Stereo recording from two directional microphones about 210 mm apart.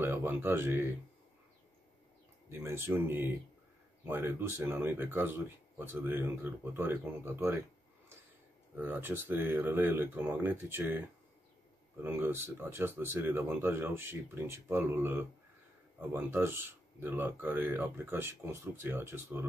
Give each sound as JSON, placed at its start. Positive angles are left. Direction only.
{"t": 0.0, "sound": "speech", "side_deg": -10}
{"t": 2.5, "sound": "speech", "side_deg": -10}
{"t": 8.7, "sound": "speech", "side_deg": -10}